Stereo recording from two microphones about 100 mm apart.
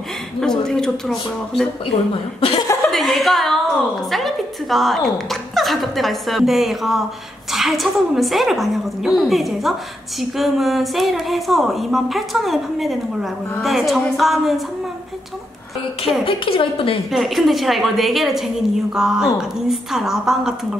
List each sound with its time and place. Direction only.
0.4 s a woman's voice: 5° left (ahead or behind)
2.9 s a woman's voice: centre (ahead or behind)
16.3 s a woman's voice: 65° left (ahead or behind)
17.1 s a woman's voice: centre (ahead or behind)